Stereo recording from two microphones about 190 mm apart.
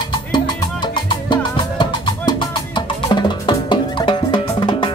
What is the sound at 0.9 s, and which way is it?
Music, 25° left (ahead or behind).